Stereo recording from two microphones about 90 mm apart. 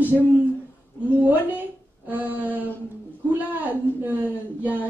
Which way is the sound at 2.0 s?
20° right (ahead or behind).